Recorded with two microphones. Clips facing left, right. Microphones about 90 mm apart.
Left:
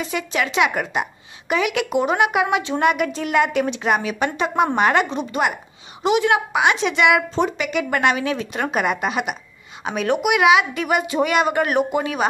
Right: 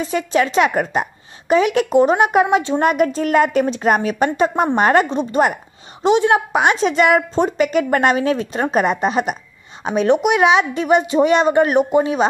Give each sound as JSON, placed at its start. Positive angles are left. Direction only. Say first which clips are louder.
{"t": 0.0, "sound": "a woman's voice", "louder": "right 6 dB", "side_deg": -35}
{"t": 9.9, "sound": "speech", "louder": "right 5 dB", "side_deg": -25}